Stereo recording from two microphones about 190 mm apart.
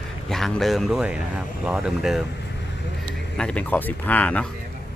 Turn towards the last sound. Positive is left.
turn(degrees=10)  # may be behind; listen again after turning